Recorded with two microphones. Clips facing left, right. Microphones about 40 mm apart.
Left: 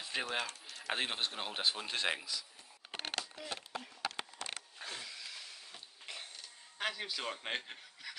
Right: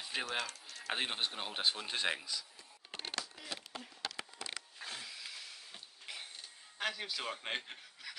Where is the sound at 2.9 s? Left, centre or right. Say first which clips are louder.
Left 2 dB; left.